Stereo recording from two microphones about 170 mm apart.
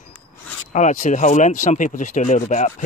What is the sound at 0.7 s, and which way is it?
Speech, 45° left (ahead or behind).